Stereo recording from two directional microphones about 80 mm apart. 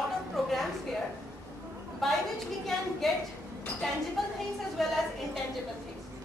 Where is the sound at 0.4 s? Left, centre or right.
Centre.